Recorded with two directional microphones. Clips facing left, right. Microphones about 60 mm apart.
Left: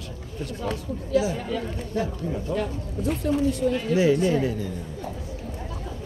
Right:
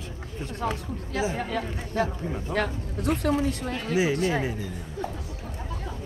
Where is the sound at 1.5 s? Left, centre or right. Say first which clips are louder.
Left 1 dB; right.